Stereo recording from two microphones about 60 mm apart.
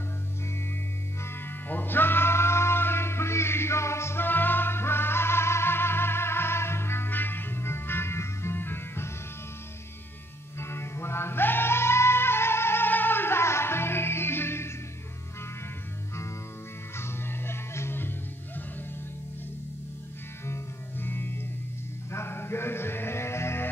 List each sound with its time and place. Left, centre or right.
1.2 s music: left
10.6 s music: left
16.9 s music: left
20.4 s music: left